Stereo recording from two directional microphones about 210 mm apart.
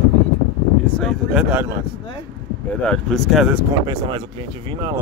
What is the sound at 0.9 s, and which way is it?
Speech, 5° left (ahead or behind).